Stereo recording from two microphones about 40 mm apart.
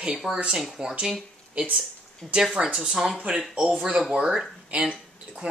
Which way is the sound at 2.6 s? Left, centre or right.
Centre.